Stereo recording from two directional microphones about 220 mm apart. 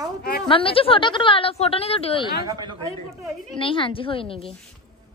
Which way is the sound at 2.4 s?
20° right (ahead or behind).